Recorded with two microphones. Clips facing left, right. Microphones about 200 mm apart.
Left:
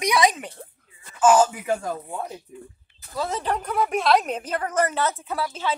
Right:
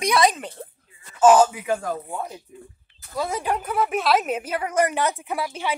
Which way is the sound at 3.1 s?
10° right (ahead or behind).